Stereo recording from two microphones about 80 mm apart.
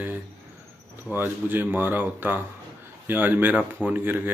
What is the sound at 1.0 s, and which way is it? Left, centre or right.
Speech, right.